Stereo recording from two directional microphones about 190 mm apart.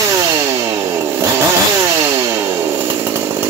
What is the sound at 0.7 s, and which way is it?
Chainsaw, 15° right (ahead or behind).